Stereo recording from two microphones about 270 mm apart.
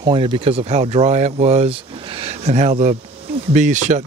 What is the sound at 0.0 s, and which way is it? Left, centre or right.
Speech, centre.